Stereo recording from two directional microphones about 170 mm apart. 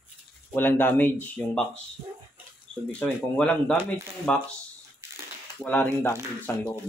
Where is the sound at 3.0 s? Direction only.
5° left (ahead or behind).